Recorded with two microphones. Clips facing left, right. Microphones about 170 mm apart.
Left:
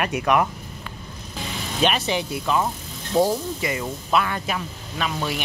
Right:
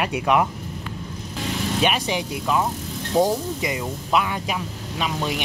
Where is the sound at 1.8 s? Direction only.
10° right (ahead or behind).